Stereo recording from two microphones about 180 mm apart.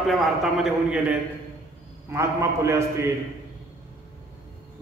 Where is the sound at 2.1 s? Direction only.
15° right (ahead or behind).